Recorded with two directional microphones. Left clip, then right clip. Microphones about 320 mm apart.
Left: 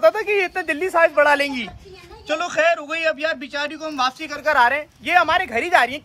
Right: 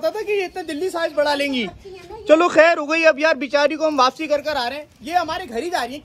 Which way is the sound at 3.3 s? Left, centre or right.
Centre.